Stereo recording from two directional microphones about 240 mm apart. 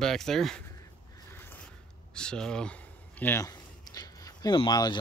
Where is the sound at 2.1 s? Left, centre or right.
Centre.